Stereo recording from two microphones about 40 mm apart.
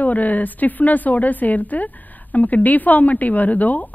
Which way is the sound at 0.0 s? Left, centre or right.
Left.